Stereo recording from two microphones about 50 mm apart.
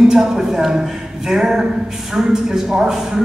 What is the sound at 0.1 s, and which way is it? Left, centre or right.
A woman's voice, centre.